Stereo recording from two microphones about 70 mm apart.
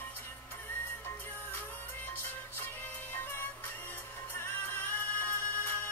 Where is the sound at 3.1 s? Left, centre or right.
Left.